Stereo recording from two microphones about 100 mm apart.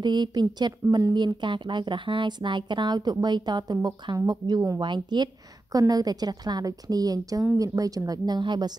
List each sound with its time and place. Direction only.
0.0 s a woman's voice: 45° right (ahead or behind)